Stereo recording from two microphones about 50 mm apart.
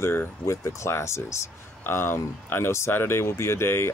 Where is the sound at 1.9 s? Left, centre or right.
Left.